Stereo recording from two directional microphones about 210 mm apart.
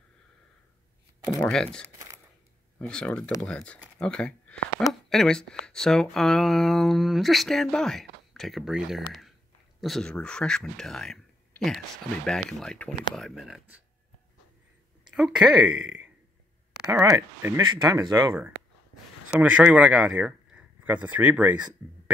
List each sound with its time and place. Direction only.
1.2 s speech: 10° left (ahead or behind)
15.1 s speech: 5° right (ahead or behind); by 18.3 s 20° right (ahead or behind)
19.4 s speech: 5° right (ahead or behind)